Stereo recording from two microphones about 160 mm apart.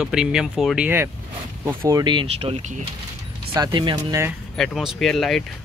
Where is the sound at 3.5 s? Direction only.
30° right (ahead or behind).